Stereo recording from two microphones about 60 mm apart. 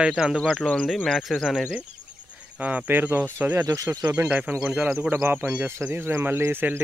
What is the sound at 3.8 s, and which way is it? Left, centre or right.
Speech, right.